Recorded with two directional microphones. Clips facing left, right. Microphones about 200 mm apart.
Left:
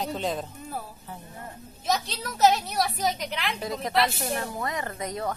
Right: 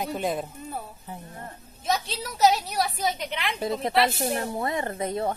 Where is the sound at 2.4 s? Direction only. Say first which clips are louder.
Even; centre (ahead or behind).